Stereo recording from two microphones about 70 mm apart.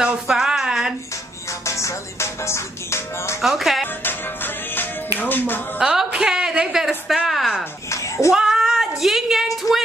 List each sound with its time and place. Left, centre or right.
0.0 s a sound: centre
1.7 s music: left
3.3 s a woman's voice: centre
5.2 s speech: left
5.8 s a woman's voice: centre
8.3 s a sound: centre